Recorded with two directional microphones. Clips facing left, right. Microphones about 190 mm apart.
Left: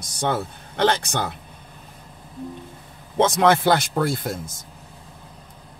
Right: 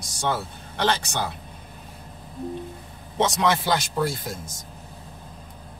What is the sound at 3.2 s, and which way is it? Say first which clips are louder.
Speech: left 5 dB; 55° left (ahead or behind).